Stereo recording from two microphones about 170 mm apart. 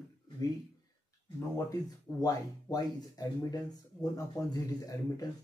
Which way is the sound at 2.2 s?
20° left (ahead or behind).